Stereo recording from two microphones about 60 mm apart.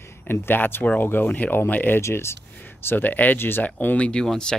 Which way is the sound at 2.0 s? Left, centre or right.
Left.